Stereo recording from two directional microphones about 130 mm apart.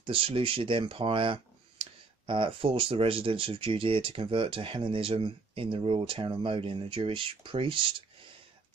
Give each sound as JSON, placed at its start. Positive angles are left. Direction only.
{"t": 0.0, "sound": "speech", "side_deg": -45}